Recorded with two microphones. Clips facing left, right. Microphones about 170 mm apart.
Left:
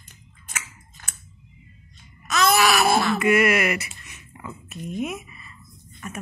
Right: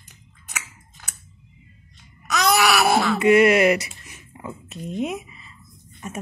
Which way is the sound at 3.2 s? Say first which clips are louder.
Right 8 dB; 30° right (ahead or behind).